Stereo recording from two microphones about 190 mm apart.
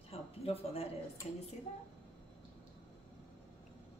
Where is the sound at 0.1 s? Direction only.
30° left (ahead or behind).